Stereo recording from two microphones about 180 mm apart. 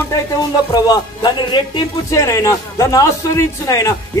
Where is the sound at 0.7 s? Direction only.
25° left (ahead or behind).